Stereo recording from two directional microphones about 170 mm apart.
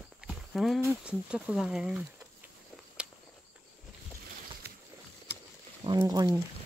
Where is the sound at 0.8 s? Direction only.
5° right (ahead or behind).